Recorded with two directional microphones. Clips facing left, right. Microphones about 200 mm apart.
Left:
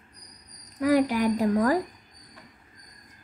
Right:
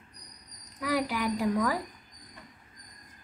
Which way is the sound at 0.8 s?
45° left (ahead or behind).